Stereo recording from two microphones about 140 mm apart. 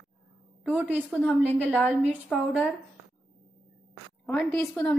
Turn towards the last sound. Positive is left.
turn(degrees=10)  # may be behind; listen again after turning